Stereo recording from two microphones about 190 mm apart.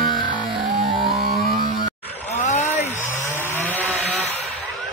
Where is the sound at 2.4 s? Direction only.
35° left (ahead or behind).